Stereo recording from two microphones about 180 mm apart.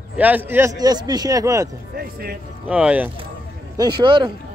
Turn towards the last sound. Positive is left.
turn(degrees=-25)  # may be behind; listen again after turning